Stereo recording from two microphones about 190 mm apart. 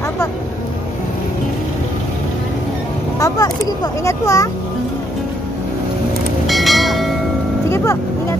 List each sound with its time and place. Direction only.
3.2 s speech: 20° left (ahead or behind)
6.4 s church bell: centre (ahead or behind)
7.7 s vehicle: 15° left (ahead or behind)